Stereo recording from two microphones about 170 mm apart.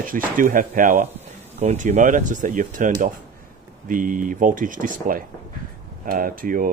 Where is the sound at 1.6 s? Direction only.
40° right (ahead or behind).